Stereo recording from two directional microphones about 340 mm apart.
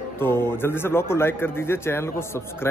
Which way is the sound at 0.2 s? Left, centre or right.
Centre.